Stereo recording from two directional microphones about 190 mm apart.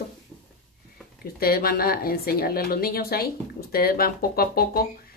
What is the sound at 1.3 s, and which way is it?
A woman's voice, 50° left (ahead or behind).